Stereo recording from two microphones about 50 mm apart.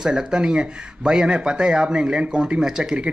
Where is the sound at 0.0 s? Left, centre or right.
Centre.